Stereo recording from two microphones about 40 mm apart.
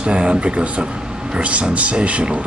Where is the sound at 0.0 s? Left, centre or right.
Right.